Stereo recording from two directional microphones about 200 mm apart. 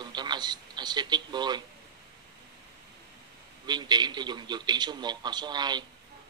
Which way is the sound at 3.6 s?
20° right (ahead or behind).